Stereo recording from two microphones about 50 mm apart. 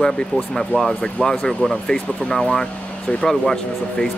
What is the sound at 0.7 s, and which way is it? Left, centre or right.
Speech, left.